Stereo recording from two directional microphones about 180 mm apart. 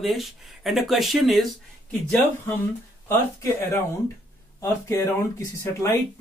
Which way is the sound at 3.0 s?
15° left (ahead or behind).